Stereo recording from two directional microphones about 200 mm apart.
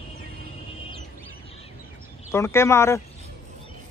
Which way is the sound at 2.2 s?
15° left (ahead or behind).